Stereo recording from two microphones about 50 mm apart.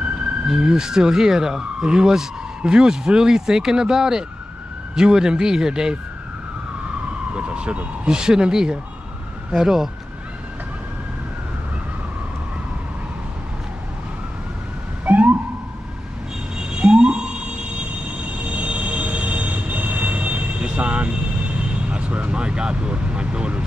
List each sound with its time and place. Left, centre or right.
0.5 s speech: centre
7.3 s speech: right
15.0 s cat: right
16.5 s a sound: centre
18.5 s train: right